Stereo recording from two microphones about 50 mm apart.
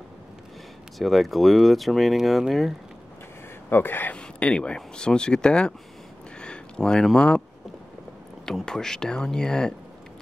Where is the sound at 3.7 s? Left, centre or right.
Left.